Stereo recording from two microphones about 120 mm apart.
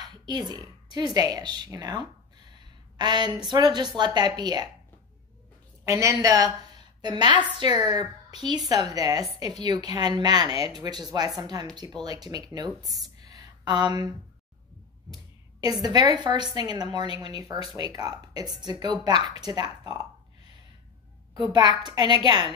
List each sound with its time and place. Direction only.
0.1 s a woman's voice: 35° right (ahead or behind)
5.9 s a woman's voice: 25° right (ahead or behind)
13.2 s a sound: 35° right (ahead or behind)
15.6 s a woman's voice: 35° right (ahead or behind)
21.3 s a woman's voice: 35° right (ahead or behind)